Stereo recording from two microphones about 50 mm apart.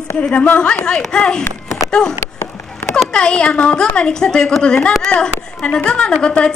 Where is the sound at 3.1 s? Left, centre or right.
Centre.